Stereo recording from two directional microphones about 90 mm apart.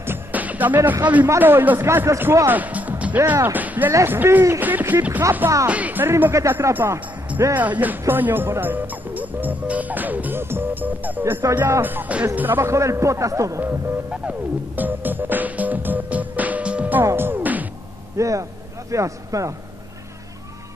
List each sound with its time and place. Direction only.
0.0 s music: 20° right (ahead or behind)
1.0 s a man's voice: 15° right (ahead or behind)
14.8 s music: 20° right (ahead or behind)
17.0 s music: 25° right (ahead or behind)
18.1 s a man's voice: 35° right (ahead or behind)